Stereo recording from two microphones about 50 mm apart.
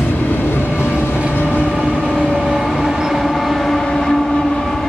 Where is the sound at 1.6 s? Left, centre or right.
Centre.